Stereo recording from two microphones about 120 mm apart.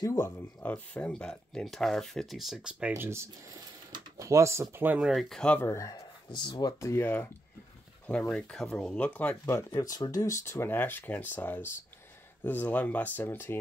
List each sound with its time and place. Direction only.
0.0 s speech: 20° left (ahead or behind); by 2.7 s 5° right (ahead or behind)
2.9 s speech: 20° right (ahead or behind)
5.0 s speech: centre (ahead or behind)
5.6 s speech: 25° left (ahead or behind)
6.8 s speech: 20° left (ahead or behind)
8.1 s speech: 5° left (ahead or behind)
9.7 s speech: 30° left (ahead or behind); by 13.6 s 15° left (ahead or behind)